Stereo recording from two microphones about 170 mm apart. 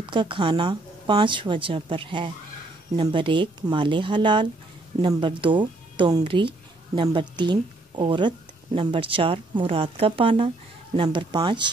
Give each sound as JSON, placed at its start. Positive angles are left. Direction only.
{"t": 0.0, "sound": "a woman's voice", "side_deg": -30}